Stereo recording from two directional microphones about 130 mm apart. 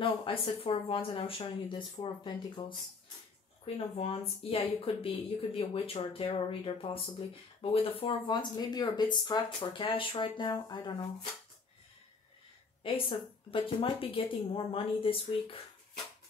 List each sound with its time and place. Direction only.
0.0 s speech: 45° left (ahead or behind)
3.6 s a woman's voice: 50° left (ahead or behind); by 11.1 s 35° left (ahead or behind)
12.8 s a woman's voice: 40° left (ahead or behind)